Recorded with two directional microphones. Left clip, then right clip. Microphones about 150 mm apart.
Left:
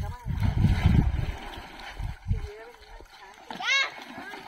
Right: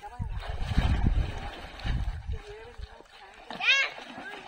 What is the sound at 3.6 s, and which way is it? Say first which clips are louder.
Splash: right 1 dB; 10° left (ahead or behind).